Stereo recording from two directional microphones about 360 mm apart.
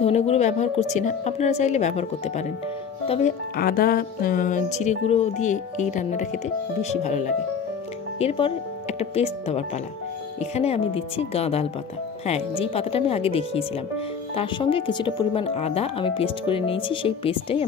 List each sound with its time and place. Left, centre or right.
0.0 s speech: centre